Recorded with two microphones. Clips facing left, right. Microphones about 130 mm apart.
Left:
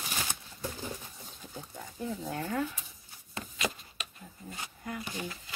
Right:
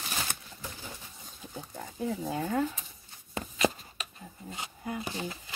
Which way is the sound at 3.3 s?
25° right (ahead or behind).